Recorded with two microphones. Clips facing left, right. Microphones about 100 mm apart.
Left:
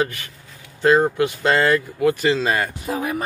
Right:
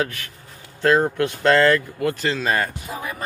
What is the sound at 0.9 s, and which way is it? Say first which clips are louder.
Speech: left 2 dB; 15° left (ahead or behind).